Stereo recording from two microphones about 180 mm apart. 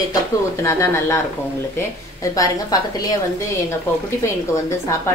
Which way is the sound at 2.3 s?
20° left (ahead or behind).